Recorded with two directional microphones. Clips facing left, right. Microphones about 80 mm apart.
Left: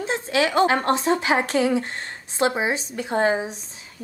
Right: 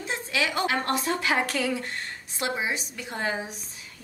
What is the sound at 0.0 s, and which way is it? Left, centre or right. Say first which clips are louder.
A woman's voice: left 7 dB; left.